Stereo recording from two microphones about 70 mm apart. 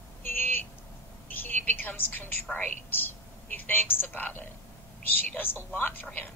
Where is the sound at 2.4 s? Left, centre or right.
Left.